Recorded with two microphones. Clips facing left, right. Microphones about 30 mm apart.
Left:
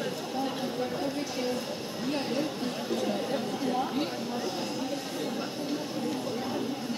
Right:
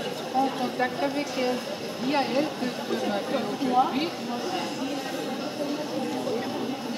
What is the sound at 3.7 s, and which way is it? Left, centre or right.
Speech, right.